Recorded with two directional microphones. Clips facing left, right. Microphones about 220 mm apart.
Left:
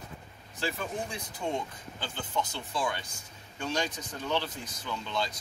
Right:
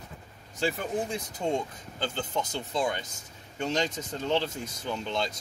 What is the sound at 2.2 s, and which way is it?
Speech, 20° right (ahead or behind).